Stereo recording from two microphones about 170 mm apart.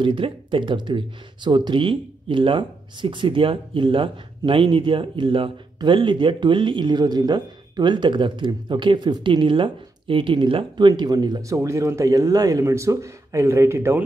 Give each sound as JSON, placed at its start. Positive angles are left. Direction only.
{"t": 0.0, "sound": "speech", "side_deg": -30}